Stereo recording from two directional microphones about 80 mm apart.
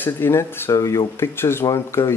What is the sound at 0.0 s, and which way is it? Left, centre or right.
Speech, left.